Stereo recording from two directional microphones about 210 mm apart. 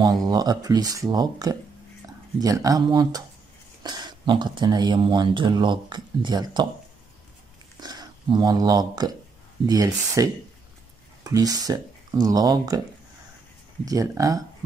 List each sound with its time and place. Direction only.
0.0 s speech: 20° right (ahead or behind)
7.8 s speech: 20° right (ahead or behind)
13.8 s speech: 15° right (ahead or behind)